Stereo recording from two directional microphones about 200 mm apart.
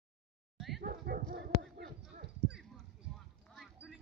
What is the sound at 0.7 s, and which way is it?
Dog, 50° right (ahead or behind).